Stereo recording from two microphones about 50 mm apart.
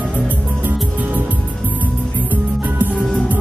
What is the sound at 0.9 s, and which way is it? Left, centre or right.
Music, right.